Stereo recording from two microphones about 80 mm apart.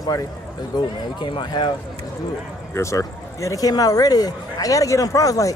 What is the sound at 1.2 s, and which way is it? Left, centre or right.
Speech, left.